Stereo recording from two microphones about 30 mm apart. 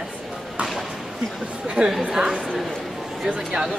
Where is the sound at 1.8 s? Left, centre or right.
Right.